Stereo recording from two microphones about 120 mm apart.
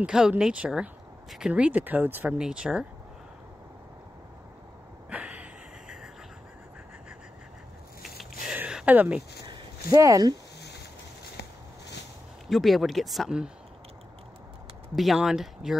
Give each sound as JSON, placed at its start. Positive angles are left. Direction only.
{"t": 0.0, "sound": "speech", "side_deg": -5}
{"t": 5.1, "sound": "a sound", "side_deg": -10}
{"t": 8.0, "sound": "a sound", "side_deg": 0}
{"t": 9.8, "sound": "speech", "side_deg": -30}
{"t": 12.4, "sound": "speech", "side_deg": 0}
{"t": 15.0, "sound": "speech", "side_deg": 0}